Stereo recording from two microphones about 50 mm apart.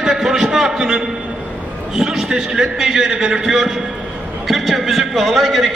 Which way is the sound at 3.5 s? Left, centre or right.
Centre.